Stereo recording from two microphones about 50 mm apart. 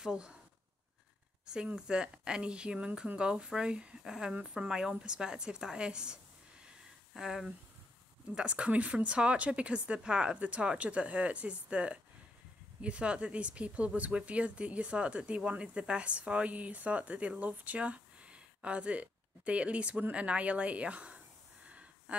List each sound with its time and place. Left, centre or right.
0.0 s speech: centre
1.4 s a sound: centre
1.8 s a woman's voice: centre
7.2 s a woman's voice: centre
8.4 s speech: right